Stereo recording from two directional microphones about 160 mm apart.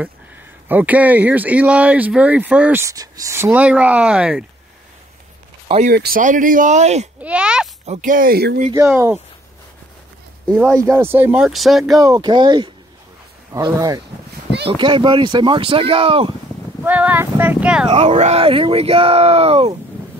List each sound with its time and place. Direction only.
0.7 s speech: 10° right (ahead or behind)
2.8 s speech: 20° right (ahead or behind); by 4.5 s 5° right (ahead or behind)
5.9 s speech: 70° right (ahead or behind); by 7.1 s 45° right (ahead or behind)
7.2 s speech: 5° right (ahead or behind)
7.8 s speech: 45° right (ahead or behind); by 8.5 s 75° right (ahead or behind)
8.7 s speech: 15° right (ahead or behind)
10.5 s speech: centre (ahead or behind)
10.8 s speech: 15° right (ahead or behind); by 12.0 s centre (ahead or behind)
12.0 s speech: 25° right (ahead or behind)
16.8 s speech: 10° right (ahead or behind)
17.8 s speech: 40° right (ahead or behind)